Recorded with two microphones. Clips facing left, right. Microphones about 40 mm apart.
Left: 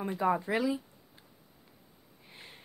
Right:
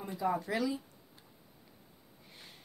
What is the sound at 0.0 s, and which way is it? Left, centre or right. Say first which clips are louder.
Speech: left 4 dB; left.